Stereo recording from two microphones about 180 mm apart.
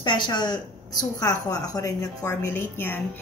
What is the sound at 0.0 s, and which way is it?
A woman's voice, 25° left (ahead or behind).